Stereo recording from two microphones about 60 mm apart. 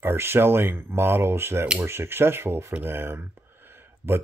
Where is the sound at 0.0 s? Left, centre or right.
Right.